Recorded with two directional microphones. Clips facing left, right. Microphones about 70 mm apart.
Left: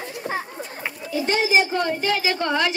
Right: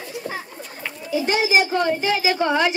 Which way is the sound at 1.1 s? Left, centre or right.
Centre.